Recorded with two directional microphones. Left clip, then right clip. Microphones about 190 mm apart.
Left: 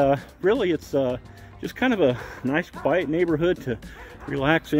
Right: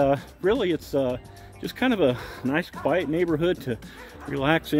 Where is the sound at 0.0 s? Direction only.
15° left (ahead or behind).